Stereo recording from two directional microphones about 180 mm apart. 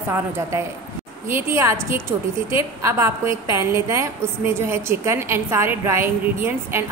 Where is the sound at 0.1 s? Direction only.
15° right (ahead or behind).